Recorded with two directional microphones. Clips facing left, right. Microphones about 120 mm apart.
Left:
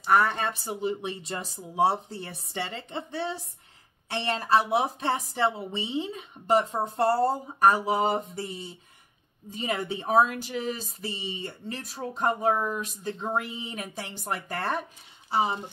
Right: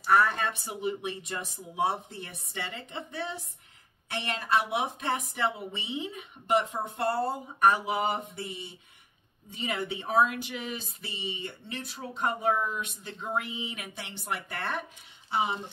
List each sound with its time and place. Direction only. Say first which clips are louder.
0.0 s speech: left 1 dB; 25° left (ahead or behind)